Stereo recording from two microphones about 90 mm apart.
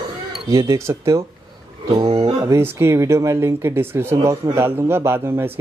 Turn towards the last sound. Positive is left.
turn(degrees=-25)  # may be behind; listen again after turning